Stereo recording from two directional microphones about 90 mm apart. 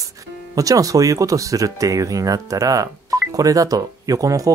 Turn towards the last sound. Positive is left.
turn(degrees=-40)  # may be behind; listen again after turning